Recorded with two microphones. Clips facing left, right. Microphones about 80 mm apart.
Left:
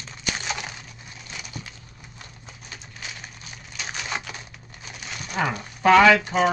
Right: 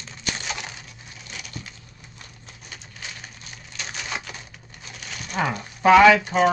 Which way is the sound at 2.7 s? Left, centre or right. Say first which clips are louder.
Even; centre.